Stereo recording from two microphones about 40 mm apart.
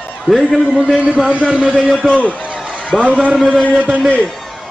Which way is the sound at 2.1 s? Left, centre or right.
Left.